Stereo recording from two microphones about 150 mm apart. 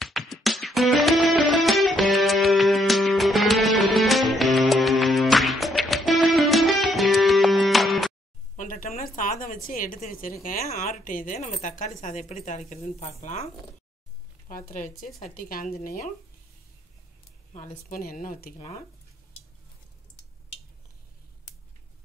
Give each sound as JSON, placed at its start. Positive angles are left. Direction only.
{"t": 0.0, "sound": "music", "side_deg": 0}
{"t": 8.5, "sound": "a woman's voice", "side_deg": 65}
{"t": 14.5, "sound": "a woman's voice", "side_deg": 75}
{"t": 17.6, "sound": "a woman's voice", "side_deg": 65}